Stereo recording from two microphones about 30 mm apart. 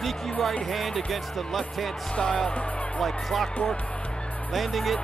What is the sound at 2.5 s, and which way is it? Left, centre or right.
Speech, left.